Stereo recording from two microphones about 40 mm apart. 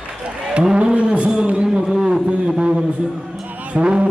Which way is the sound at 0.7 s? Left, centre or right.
Right.